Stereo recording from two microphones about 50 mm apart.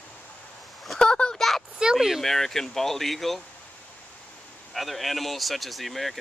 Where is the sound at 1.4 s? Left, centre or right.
Centre.